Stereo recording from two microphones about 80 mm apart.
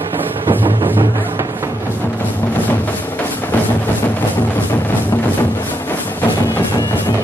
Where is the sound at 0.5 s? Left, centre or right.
Right.